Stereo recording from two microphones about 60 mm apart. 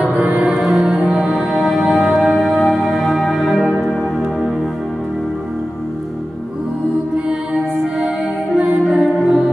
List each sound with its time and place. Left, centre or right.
0.0 s music: right
0.6 s music: centre
7.2 s music: centre